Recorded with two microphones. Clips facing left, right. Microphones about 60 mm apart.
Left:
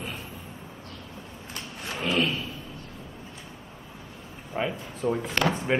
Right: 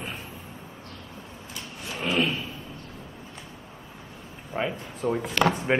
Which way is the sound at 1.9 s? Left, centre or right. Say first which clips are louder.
Right 1 dB; centre.